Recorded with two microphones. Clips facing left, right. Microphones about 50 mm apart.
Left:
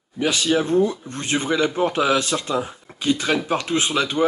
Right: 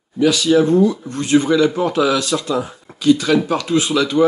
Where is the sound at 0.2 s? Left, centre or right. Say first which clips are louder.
Right 7 dB; left.